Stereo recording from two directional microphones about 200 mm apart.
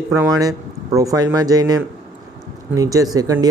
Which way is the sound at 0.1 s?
15° right (ahead or behind).